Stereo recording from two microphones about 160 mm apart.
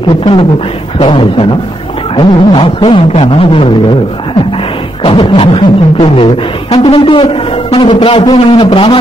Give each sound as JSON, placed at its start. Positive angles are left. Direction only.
{"t": 0.2, "sound": "speech", "side_deg": 30}
{"t": 5.0, "sound": "speech", "side_deg": 35}